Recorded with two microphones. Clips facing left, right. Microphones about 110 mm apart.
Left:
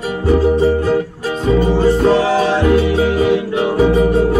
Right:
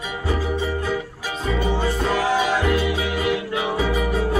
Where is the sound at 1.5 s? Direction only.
35° left (ahead or behind).